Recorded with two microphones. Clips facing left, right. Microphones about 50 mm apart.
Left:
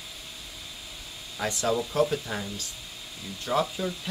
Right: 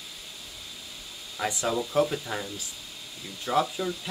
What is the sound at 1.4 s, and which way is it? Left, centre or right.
Speech, centre.